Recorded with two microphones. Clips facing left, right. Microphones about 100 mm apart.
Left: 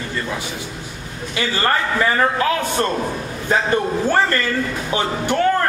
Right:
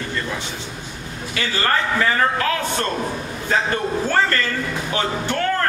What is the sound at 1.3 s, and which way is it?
A man's voice, 15° left (ahead or behind).